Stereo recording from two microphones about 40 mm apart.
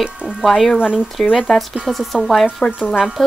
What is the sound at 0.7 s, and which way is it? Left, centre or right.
Speech, right.